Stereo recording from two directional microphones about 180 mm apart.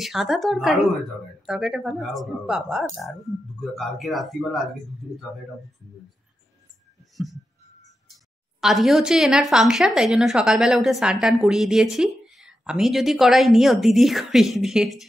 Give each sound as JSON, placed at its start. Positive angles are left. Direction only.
{"t": 0.0, "sound": "speech", "side_deg": 0}
{"t": 8.5, "sound": "speech", "side_deg": 0}